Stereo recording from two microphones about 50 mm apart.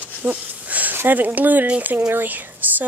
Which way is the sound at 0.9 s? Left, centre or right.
Right.